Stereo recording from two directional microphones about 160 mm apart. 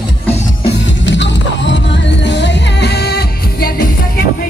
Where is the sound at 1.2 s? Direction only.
90° left; by 4.2 s 70° left (ahead or behind).